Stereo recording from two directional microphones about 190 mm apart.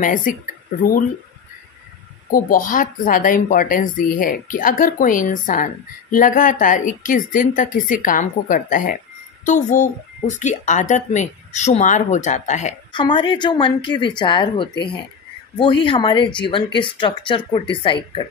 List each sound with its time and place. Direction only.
0.0 s speech: 45° left (ahead or behind)
2.3 s speech: 45° left (ahead or behind)
12.9 s speech: 25° left (ahead or behind)